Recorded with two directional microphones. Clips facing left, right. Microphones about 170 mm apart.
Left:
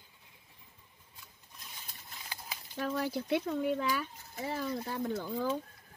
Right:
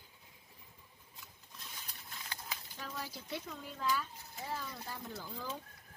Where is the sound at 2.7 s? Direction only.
60° left (ahead or behind).